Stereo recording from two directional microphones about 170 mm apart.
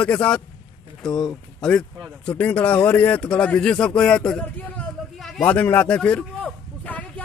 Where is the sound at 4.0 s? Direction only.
5° left (ahead or behind).